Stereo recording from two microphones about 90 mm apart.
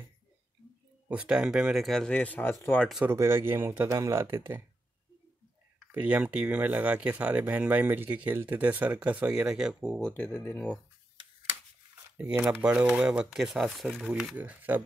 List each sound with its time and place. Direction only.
1.0 s speech: 10° right (ahead or behind); by 2.1 s 5° left (ahead or behind)
2.1 s speech: 15° left (ahead or behind)
3.1 s speech: 25° right (ahead or behind)
5.9 s speech: 15° right (ahead or behind)
10.1 s speech: 25° left (ahead or behind)
12.2 s speech: 15° right (ahead or behind)
14.3 s speech: 20° right (ahead or behind)